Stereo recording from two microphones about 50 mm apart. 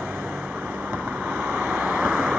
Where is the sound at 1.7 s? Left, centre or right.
Right.